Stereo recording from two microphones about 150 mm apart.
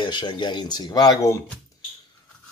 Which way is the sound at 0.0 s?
30° left (ahead or behind).